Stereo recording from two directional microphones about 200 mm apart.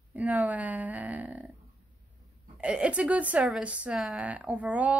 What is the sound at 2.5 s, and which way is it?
A woman's voice, 5° right (ahead or behind).